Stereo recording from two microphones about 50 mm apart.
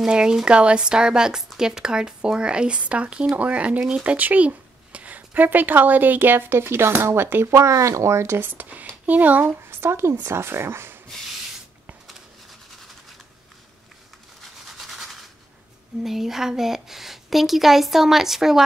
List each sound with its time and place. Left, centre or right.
0.0 s speech: centre; by 7.4 s right
7.5 s speech: right
8.4 s speech: right
9.7 s speech: right
14.4 s a sound: centre
16.0 s a woman's voice: centre